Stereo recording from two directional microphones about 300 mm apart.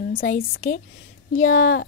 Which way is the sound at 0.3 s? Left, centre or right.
Left.